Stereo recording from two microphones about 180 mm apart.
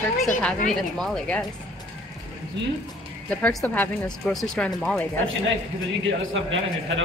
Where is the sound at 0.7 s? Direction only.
Centre (ahead or behind).